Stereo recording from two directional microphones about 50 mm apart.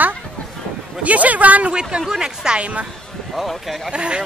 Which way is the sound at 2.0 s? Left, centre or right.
Centre.